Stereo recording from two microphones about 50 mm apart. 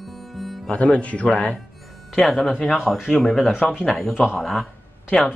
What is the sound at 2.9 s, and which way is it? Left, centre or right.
Speech, centre.